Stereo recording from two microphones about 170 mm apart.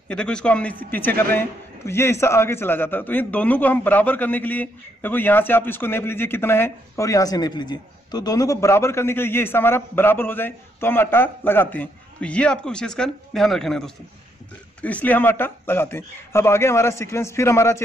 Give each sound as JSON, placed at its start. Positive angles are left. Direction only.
{"t": 0.1, "sound": "a man's voice", "side_deg": 5}